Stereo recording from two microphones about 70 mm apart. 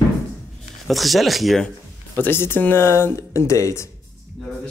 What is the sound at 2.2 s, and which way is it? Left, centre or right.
Speech, left.